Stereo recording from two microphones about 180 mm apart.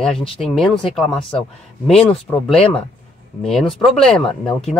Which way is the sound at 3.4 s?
Centre (ahead or behind).